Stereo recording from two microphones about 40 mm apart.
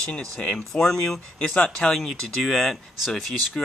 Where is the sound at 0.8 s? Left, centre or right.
Centre.